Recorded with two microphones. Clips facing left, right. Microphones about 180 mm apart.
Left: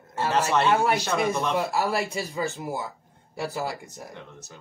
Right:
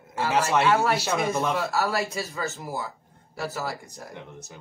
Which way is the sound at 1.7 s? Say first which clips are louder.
Even; 15° left (ahead or behind).